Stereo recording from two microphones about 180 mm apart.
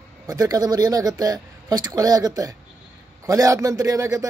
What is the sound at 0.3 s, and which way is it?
A man's voice, 20° right (ahead or behind).